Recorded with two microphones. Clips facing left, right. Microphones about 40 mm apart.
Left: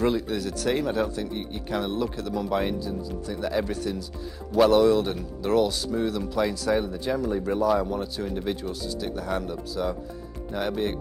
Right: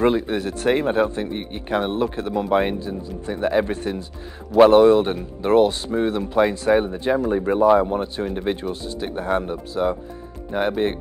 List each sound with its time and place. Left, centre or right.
0.0 s a man's voice: right